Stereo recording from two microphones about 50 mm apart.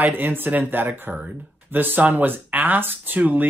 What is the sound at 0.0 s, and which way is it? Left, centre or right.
Speech, right.